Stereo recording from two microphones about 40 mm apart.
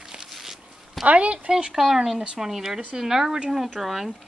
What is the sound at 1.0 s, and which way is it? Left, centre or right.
Speech, right.